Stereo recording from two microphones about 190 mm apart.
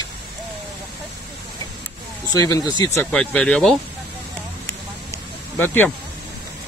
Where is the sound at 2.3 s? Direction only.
20° left (ahead or behind).